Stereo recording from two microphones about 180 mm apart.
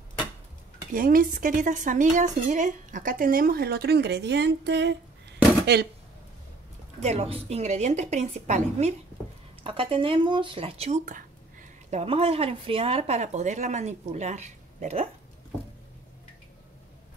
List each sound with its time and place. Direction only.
0.9 s a woman's voice: 50° right (ahead or behind)
7.0 s speech: 40° right (ahead or behind)